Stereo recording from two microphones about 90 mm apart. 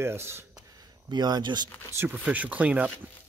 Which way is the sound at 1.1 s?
55° right (ahead or behind).